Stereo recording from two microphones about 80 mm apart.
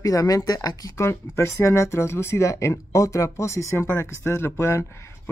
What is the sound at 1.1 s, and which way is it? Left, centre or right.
Speech, left.